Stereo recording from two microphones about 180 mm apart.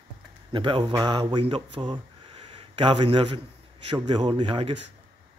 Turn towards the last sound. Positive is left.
turn(degrees=-25)  # may be behind; listen again after turning